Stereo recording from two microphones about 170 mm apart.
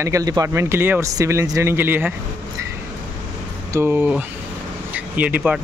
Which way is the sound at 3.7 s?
15° right (ahead or behind).